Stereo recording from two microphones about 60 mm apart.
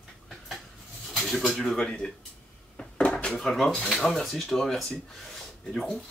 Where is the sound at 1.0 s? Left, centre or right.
Centre.